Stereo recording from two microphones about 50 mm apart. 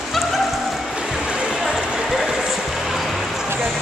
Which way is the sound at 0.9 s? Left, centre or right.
Centre.